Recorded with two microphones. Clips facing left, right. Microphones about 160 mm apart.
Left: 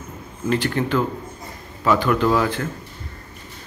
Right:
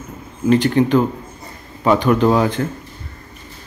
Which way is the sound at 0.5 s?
20° right (ahead or behind).